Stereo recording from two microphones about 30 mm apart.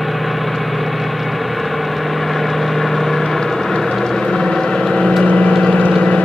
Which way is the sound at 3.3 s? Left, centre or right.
Centre.